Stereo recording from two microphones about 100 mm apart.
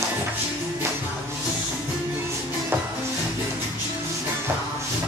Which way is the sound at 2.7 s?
20° right (ahead or behind).